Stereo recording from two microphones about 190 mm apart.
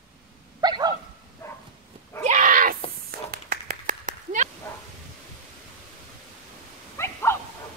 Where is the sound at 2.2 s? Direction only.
40° right (ahead or behind).